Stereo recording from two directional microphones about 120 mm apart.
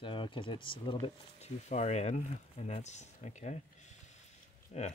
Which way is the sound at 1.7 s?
70° left (ahead or behind).